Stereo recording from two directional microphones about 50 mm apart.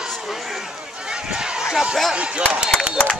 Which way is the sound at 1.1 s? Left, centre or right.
Centre.